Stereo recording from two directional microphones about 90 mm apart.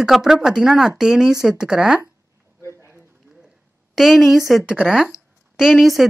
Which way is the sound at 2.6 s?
30° right (ahead or behind).